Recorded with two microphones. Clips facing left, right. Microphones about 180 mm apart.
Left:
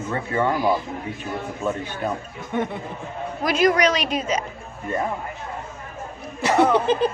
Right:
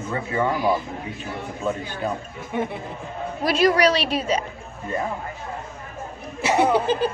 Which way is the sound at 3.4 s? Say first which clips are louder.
Right 1 dB; 30° right (ahead or behind).